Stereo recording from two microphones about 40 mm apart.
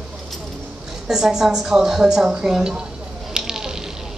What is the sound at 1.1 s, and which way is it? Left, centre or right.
A woman's voice, centre.